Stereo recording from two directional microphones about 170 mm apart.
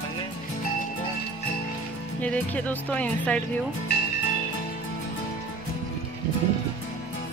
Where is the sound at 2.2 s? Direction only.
10° left (ahead or behind).